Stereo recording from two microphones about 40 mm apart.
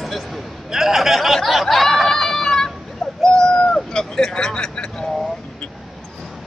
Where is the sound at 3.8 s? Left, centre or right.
Centre.